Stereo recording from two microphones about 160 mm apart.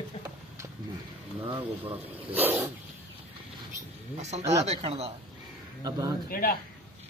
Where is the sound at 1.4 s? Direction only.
30° right (ahead or behind).